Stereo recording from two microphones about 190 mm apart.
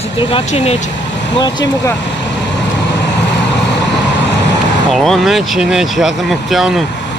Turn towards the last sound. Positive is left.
turn(degrees=0)  # may be behind; listen again after turning